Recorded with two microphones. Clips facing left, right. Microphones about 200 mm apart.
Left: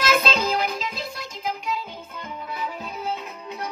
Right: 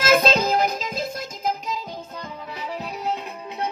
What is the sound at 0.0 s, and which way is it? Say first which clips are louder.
Music: right 4 dB; 45° right (ahead or behind).